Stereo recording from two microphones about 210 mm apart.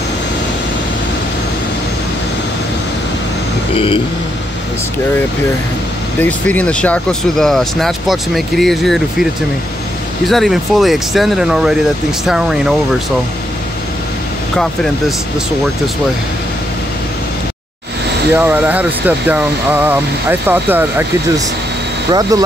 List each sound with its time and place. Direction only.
3.7 s speech: 25° left (ahead or behind)
6.2 s speech: 5° left (ahead or behind)
14.6 s speech: 5° left (ahead or behind)
18.3 s speech: 10° right (ahead or behind)
22.3 s speech: 15° right (ahead or behind)